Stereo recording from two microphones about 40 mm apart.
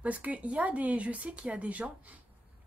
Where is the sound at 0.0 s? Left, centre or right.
Right.